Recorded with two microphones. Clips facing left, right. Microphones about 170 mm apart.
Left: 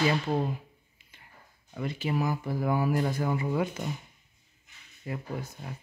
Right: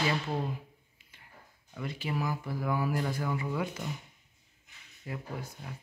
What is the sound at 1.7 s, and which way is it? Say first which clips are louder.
Speech: left 5 dB; 25° left (ahead or behind).